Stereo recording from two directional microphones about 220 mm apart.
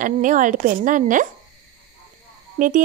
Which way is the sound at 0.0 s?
35° right (ahead or behind).